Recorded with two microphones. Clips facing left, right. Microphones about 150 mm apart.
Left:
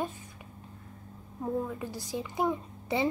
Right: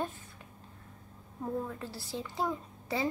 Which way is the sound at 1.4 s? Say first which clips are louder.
Left 3 dB; 10° left (ahead or behind).